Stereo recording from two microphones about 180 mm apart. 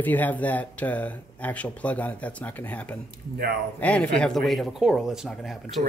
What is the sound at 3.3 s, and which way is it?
Speech, 60° right (ahead or behind).